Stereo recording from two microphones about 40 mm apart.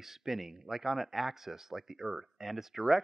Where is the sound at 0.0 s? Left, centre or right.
Centre.